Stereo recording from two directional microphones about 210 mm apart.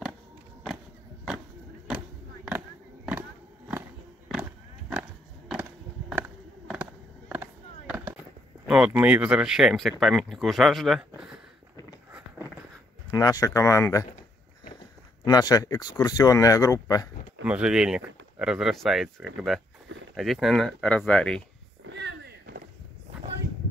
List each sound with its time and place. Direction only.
3.1 s vehicle: 10° right (ahead or behind)
4.3 s skateboard: 5° right (ahead or behind)
5.5 s a sound: 5° right (ahead or behind)
6.7 s skateboard: 5° right (ahead or behind)
8.6 s speech: 5° right (ahead or behind)
13.1 s speech: 15° left (ahead or behind)
15.2 s speech: 15° left (ahead or behind)
17.5 s speech: 5° right (ahead or behind)
21.8 s a sound: 55° right (ahead or behind)